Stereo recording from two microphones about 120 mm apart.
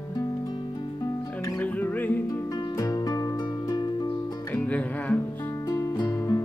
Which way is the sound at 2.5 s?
30° left (ahead or behind).